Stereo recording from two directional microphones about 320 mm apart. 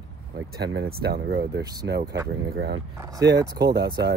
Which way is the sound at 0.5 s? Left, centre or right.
Right.